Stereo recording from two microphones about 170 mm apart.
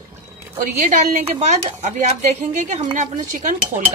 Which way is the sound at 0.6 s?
50° right (ahead or behind).